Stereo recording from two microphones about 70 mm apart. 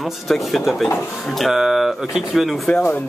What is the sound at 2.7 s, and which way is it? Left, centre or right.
Speech, left.